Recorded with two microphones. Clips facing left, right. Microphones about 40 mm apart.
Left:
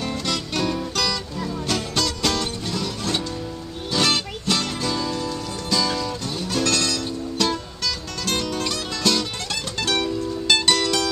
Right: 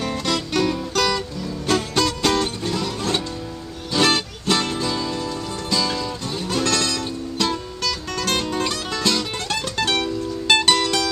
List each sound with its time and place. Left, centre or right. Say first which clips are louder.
0.0 s music: right 3 dB; centre
0.6 s music: right 3 dB; centre
0.9 s music: right 4 dB; centre
7.3 s music: even; centre
8.2 s music: right 2 dB; right